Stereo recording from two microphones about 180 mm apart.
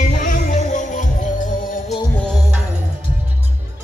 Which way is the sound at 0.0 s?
45° left (ahead or behind).